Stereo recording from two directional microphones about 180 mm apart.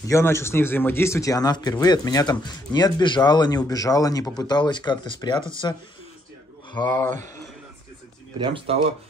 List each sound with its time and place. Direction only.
0.0 s speech: 15° left (ahead or behind)
8.4 s speech: 30° right (ahead or behind)